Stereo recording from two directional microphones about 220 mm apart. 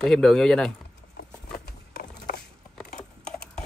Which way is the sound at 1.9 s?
45° left (ahead or behind).